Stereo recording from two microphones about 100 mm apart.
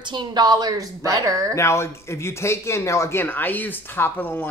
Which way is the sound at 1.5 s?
30° left (ahead or behind).